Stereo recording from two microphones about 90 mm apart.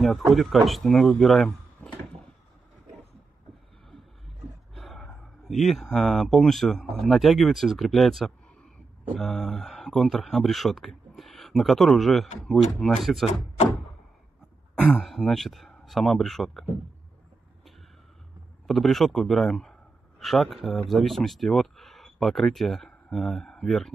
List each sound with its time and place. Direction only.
0.0 s speech: centre (ahead or behind)
1.8 s a sound: 15° left (ahead or behind)
4.7 s a sound: centre (ahead or behind)
5.5 s speech: centre (ahead or behind)
15.0 s speech: 5° left (ahead or behind)
18.7 s a man's voice: centre (ahead or behind)